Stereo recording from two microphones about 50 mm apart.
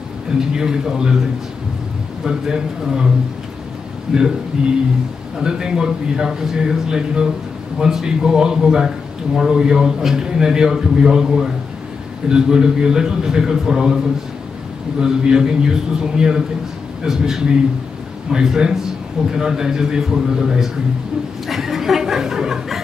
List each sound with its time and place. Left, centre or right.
0.6 s a man's voice: centre
2.2 s a man's voice: centre
4.1 s a man's voice: centre
15.0 s a man's voice: centre
21.5 s chuckle: centre